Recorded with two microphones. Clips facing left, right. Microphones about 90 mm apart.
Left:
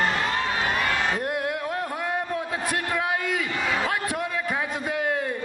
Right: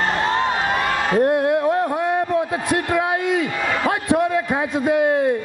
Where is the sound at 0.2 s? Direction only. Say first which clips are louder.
Right 6 dB; 35° right (ahead or behind).